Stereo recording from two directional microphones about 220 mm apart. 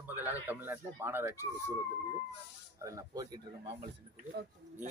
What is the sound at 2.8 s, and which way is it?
Speech, 15° right (ahead or behind).